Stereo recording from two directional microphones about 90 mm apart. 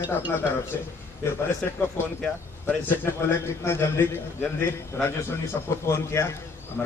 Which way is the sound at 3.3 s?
25° left (ahead or behind).